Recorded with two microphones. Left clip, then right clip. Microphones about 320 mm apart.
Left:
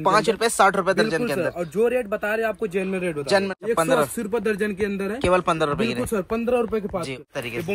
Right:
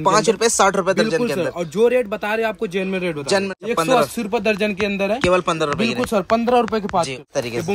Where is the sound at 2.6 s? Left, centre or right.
Centre.